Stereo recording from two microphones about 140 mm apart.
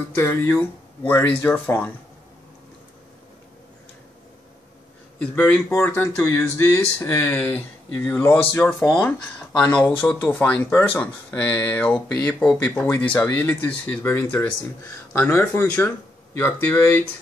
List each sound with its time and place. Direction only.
0.1 s speech: 15° left (ahead or behind)
5.2 s speech: 10° left (ahead or behind)